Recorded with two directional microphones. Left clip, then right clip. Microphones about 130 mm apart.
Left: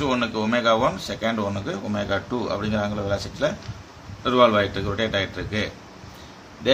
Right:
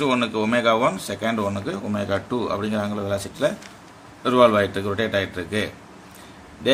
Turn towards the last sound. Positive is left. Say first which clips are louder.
# even
turn(degrees=-30)  # may be behind; listen again after turning